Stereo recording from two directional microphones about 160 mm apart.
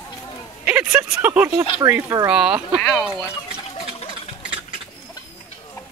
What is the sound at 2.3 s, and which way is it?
Speech, 5° right (ahead or behind).